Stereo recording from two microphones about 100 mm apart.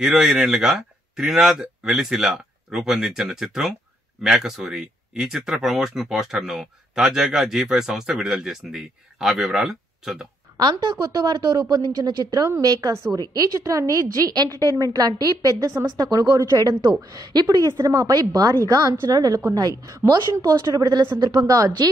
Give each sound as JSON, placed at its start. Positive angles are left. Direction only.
{"t": 0.0, "sound": "speech", "side_deg": -5}
{"t": 10.6, "sound": "a woman's voice", "side_deg": -45}